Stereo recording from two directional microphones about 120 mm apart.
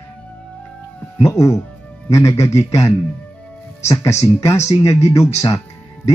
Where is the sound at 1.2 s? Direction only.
25° left (ahead or behind).